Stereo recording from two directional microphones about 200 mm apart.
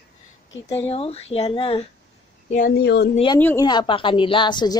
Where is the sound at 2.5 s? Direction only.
50° left (ahead or behind).